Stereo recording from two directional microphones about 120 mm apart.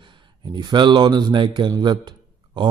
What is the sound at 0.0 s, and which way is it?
A man's voice, 40° right (ahead or behind).